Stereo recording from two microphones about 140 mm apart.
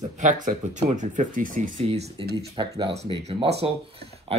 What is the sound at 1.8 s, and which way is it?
Speech, 50° right (ahead or behind).